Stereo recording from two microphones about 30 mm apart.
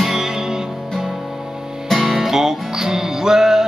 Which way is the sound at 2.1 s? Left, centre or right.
Centre.